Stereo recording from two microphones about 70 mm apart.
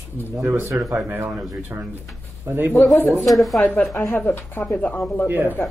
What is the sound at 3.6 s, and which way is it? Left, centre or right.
Speech, left.